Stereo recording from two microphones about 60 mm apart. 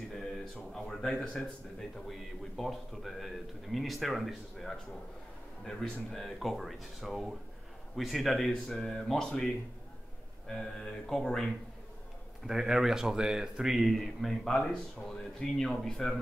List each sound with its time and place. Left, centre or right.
0.1 s speech: centre
2.0 s speech: centre
10.5 s speech: centre
12.4 s speech: centre